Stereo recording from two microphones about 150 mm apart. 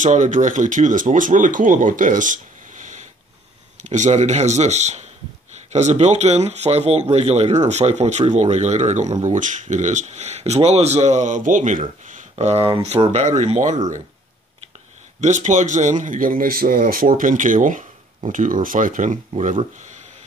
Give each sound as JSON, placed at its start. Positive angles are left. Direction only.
{"t": 0.0, "sound": "a man's voice", "side_deg": -55}
{"t": 15.1, "sound": "a man's voice", "side_deg": -55}